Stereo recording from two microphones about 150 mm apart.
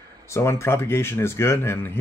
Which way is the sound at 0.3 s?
20° left (ahead or behind).